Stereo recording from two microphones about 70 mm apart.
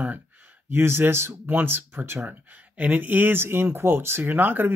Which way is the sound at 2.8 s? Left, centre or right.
Right.